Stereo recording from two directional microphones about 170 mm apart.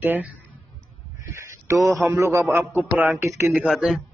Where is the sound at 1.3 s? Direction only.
15° right (ahead or behind).